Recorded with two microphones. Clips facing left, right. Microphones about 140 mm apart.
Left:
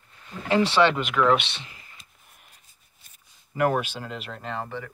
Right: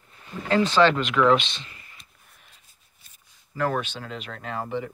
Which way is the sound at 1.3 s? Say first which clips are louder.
Right 2 dB; 65° left (ahead or behind).